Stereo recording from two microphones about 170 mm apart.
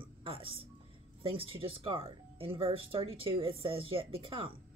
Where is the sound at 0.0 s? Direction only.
30° right (ahead or behind).